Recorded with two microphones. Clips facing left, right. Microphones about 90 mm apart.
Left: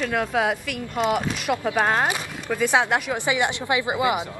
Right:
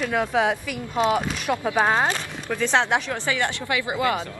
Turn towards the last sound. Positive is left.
turn(degrees=15)  # may be behind; listen again after turning